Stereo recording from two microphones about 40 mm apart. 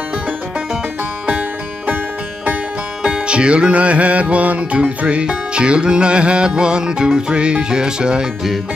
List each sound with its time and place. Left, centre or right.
3.1 s music: right